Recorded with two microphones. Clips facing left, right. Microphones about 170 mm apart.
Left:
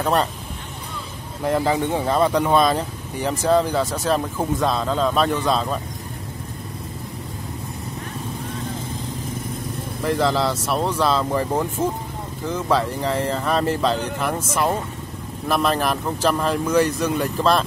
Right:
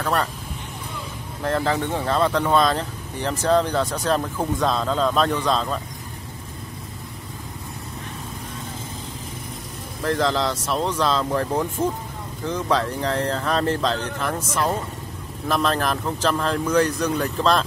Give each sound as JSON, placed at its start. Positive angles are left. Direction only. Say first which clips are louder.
{"t": 0.0, "sound": "speech", "louder": "left 3 dB", "side_deg": 20}
{"t": 1.4, "sound": "speech", "louder": "left 2 dB", "side_deg": 15}
{"t": 10.0, "sound": "speech", "louder": "left 2 dB", "side_deg": 5}